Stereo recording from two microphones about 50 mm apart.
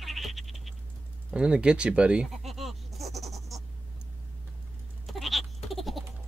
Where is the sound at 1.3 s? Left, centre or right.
Right.